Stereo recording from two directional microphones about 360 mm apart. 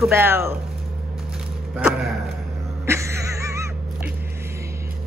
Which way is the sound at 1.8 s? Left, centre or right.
Centre.